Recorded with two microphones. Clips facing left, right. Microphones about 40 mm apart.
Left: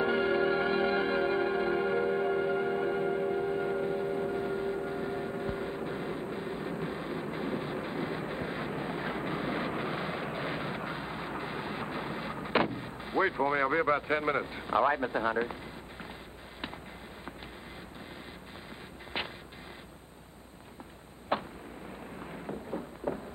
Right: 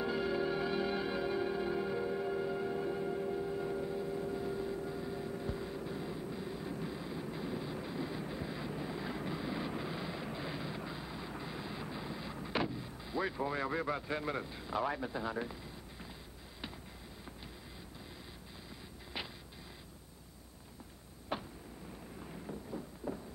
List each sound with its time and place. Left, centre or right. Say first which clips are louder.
0.0 s music: left 7 dB; left
19.1 s vehicle: left 7 dB; left
21.3 s a sound: left 8 dB; left